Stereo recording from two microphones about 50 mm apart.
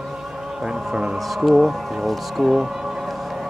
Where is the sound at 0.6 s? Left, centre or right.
Centre.